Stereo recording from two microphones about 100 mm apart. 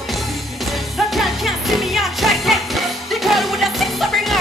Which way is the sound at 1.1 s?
Centre (ahead or behind).